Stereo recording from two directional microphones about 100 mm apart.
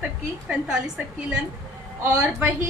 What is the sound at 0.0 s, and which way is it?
A woman's voice, 15° right (ahead or behind).